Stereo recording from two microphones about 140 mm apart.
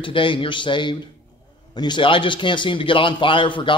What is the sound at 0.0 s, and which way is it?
A man's voice, 35° left (ahead or behind).